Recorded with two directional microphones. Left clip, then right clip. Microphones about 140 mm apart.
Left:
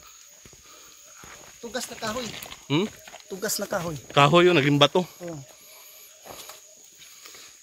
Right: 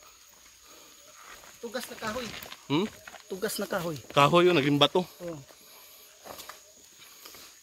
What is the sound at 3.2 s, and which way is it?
Speech, 75° right (ahead or behind).